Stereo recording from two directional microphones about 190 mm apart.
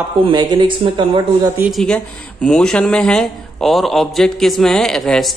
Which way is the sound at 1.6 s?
Centre (ahead or behind).